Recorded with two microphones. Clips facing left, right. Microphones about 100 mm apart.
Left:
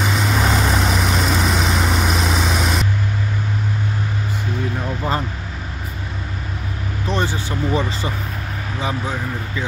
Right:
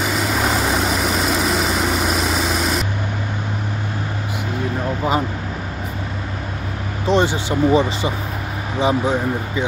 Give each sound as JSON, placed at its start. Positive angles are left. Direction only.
{"t": 0.0, "sound": "vehicle", "side_deg": 0}
{"t": 7.1, "sound": "speech", "side_deg": -20}